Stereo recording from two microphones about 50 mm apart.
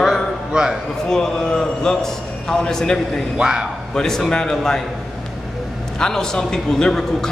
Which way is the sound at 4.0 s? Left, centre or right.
Centre.